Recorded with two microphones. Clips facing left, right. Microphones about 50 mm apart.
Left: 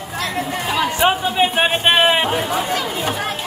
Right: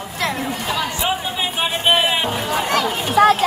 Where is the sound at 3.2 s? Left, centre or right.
Right.